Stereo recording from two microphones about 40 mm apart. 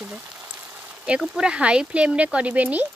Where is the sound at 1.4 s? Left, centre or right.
Right.